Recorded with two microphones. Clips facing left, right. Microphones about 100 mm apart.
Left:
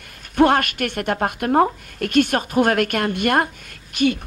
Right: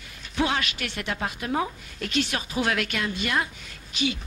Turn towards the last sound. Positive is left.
turn(degrees=55)  # may be behind; listen again after turning